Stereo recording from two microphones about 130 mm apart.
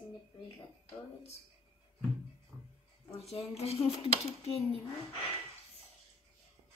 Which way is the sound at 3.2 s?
55° left (ahead or behind).